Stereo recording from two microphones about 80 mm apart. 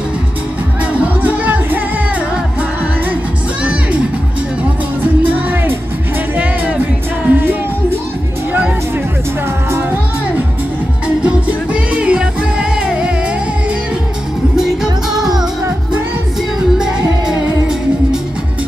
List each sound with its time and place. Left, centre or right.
1.0 s music: centre
5.5 s music: right
8.5 s music: centre
11.2 s music: centre
14.6 s music: centre
16.7 s music: centre